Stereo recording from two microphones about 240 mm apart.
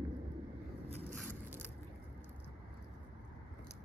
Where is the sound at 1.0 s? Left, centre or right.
Centre.